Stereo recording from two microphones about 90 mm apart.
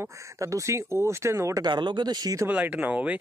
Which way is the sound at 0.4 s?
35° right (ahead or behind).